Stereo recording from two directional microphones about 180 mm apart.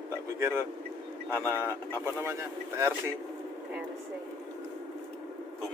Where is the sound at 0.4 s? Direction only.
15° right (ahead or behind).